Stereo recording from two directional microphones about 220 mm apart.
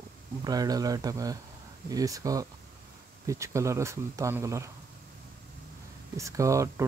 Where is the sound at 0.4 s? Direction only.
15° right (ahead or behind).